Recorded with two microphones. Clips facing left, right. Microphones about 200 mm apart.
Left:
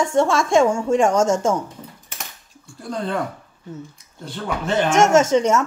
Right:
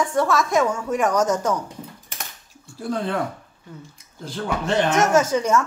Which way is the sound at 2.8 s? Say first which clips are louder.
Right 1 dB; centre (ahead or behind).